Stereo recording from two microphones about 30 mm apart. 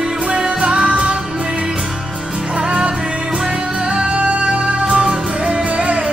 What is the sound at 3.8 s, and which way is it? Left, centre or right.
Music, right.